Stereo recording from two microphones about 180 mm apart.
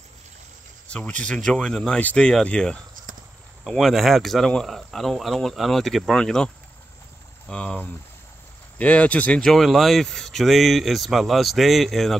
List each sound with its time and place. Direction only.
0.8 s speech: 5° left (ahead or behind)